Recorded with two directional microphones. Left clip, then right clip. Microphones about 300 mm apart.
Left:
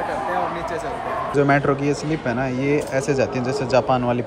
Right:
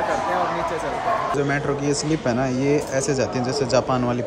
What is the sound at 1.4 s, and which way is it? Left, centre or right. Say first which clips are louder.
Speech: left 5 dB; centre.